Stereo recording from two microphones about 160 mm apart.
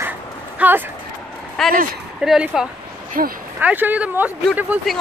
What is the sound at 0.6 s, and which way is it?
Speech, 10° right (ahead or behind).